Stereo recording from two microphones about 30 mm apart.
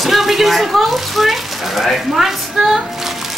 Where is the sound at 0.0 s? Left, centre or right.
Centre.